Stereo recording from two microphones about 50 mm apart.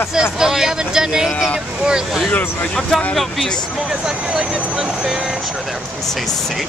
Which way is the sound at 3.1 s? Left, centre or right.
Centre.